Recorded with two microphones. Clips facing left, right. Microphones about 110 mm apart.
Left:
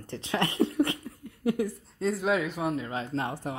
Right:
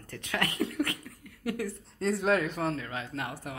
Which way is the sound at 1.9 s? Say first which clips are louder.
Even; centre (ahead or behind).